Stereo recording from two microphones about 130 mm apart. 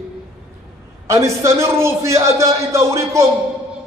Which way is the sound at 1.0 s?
20° right (ahead or behind).